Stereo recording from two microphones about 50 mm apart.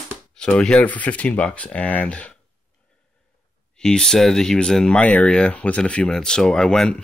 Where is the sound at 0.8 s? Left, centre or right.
Left.